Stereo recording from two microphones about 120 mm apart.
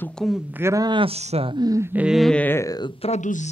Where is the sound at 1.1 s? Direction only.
60° right (ahead or behind).